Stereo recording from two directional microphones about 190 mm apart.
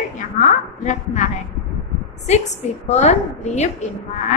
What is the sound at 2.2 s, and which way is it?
A woman's voice, 35° left (ahead or behind).